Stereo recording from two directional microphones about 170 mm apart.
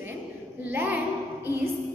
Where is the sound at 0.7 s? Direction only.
10° right (ahead or behind).